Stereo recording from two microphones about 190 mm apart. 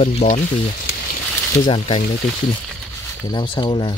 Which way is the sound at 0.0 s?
35° left (ahead or behind).